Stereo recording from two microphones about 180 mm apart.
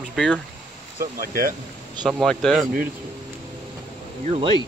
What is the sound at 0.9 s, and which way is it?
Speech, 55° right (ahead or behind).